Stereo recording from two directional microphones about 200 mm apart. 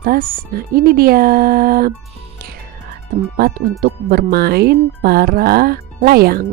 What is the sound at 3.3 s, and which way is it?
Speech, 50° right (ahead or behind).